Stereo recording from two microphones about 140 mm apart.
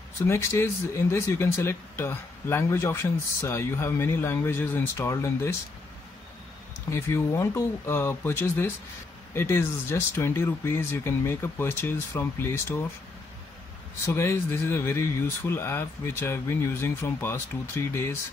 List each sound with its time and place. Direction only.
0.3 s speech: 20° left (ahead or behind)
6.9 s speech: 20° left (ahead or behind)
14.0 s speech: 20° left (ahead or behind)